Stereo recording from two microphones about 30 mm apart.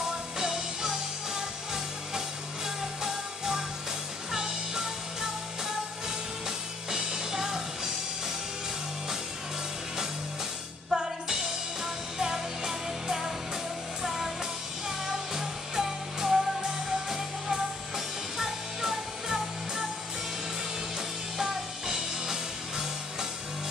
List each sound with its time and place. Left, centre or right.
0.4 s music: centre
6.4 s music: centre
10.9 s music: right
21.4 s music: centre